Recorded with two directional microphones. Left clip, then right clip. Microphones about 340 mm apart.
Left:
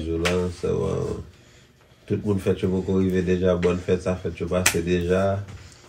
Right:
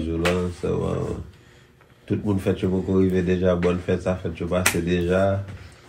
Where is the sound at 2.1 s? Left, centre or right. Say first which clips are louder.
Even; centre.